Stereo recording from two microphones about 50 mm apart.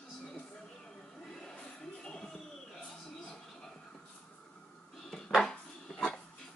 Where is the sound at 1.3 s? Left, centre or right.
Centre.